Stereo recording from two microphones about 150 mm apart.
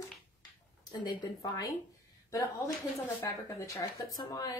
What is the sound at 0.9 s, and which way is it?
Speech, 30° left (ahead or behind).